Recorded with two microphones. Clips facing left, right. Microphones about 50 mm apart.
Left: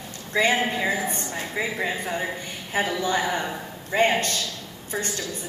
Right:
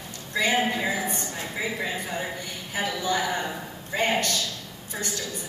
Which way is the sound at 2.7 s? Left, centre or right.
Left.